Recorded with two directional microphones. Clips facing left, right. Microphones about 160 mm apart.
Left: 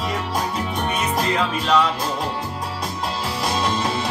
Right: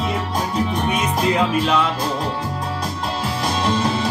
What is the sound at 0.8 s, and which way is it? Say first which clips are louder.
Music: right 3 dB; 10° right (ahead or behind).